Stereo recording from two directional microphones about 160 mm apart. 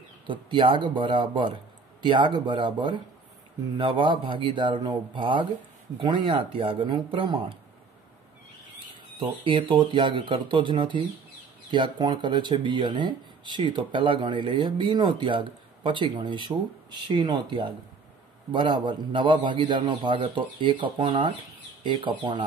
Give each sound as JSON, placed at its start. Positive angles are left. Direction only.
{"t": 0.3, "sound": "a man's voice", "side_deg": -30}
{"t": 9.2, "sound": "a man's voice", "side_deg": -30}